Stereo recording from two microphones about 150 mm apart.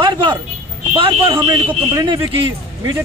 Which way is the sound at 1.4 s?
25° right (ahead or behind).